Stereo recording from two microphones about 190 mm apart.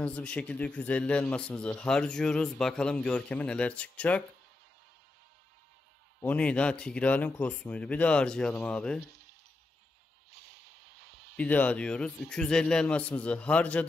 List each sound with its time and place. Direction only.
0.0 s a man's voice: 5° left (ahead or behind)
6.2 s a man's voice: 5° left (ahead or behind)
9.0 s a sound: 55° right (ahead or behind)
11.3 s a man's voice: 10° left (ahead or behind)